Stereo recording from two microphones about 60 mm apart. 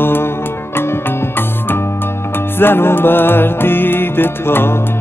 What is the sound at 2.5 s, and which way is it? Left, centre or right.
Music, left.